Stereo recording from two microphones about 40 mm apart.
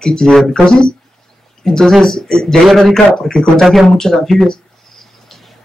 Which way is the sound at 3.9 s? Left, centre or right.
Centre.